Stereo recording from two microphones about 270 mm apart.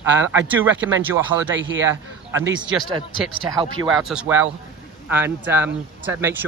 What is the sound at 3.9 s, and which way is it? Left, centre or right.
Speech, centre.